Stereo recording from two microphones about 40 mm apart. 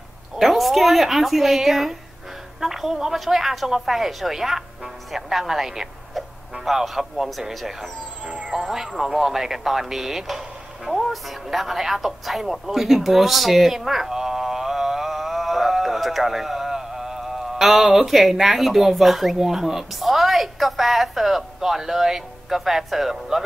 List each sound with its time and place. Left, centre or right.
0.4 s a woman's voice: centre
8.3 s music: right
8.5 s a woman's voice: centre
10.9 s a sound: centre
17.9 s speech: centre